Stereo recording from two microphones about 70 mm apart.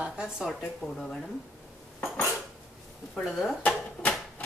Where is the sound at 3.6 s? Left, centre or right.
Left.